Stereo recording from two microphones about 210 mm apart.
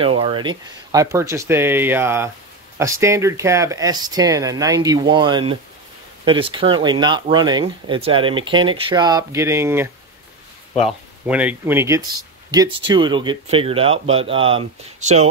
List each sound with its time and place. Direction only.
0.0 s speech: 25° right (ahead or behind)